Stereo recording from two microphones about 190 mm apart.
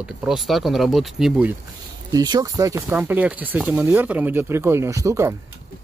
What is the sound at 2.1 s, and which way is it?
Speech, 20° right (ahead or behind).